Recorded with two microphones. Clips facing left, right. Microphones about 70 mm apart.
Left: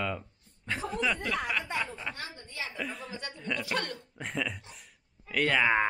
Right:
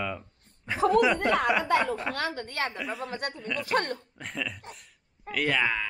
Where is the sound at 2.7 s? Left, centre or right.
Centre.